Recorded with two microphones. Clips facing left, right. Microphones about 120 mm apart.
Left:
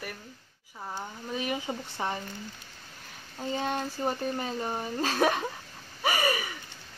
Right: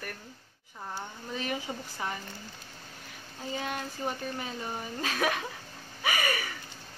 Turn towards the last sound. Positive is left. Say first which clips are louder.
# left 3 dB
turn(degrees=25)  # may be behind; listen again after turning